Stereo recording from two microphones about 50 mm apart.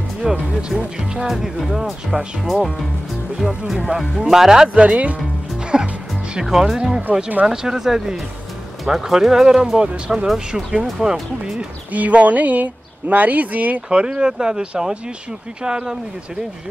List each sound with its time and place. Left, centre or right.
0.2 s music: centre
0.6 s speech: centre
1.2 s speech: centre
4.8 s speech: right
5.7 s speech: centre
11.9 s speech: right
13.8 s speech: centre